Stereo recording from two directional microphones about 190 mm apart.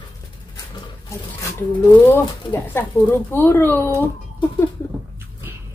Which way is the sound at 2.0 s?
10° left (ahead or behind).